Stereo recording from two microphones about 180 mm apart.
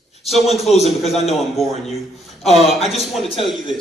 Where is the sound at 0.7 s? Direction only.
35° left (ahead or behind).